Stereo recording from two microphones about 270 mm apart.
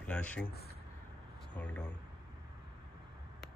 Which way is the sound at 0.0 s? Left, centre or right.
Centre.